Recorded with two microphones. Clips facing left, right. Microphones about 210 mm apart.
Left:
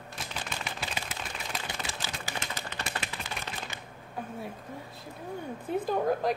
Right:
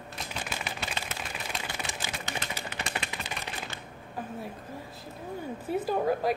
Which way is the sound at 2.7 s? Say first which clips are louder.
Right 1 dB; 15° right (ahead or behind).